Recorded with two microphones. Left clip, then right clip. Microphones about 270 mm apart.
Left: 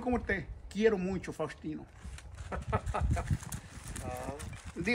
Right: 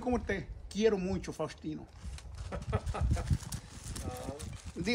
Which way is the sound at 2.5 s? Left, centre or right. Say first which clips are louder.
Left 4 dB; centre.